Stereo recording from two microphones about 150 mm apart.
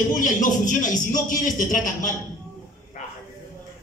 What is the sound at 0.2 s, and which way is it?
A man's voice, 60° left (ahead or behind).